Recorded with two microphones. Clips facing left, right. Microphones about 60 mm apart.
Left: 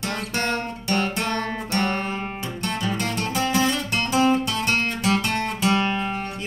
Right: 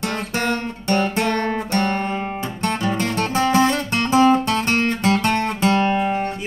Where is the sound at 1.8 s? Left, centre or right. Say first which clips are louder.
Right 1 dB; centre.